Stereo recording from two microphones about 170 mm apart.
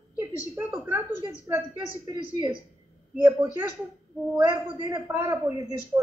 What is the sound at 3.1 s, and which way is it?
Speech, 15° right (ahead or behind).